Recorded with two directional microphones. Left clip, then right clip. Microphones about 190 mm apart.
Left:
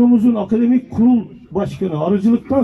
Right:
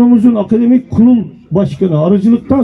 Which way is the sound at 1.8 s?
20° right (ahead or behind).